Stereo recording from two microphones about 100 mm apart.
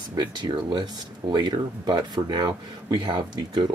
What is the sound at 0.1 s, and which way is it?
Speech, 45° right (ahead or behind).